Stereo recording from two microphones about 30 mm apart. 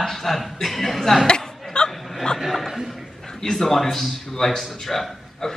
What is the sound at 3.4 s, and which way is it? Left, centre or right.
Speech, centre.